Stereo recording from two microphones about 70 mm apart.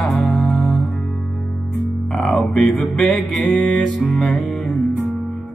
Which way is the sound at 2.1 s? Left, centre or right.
Centre.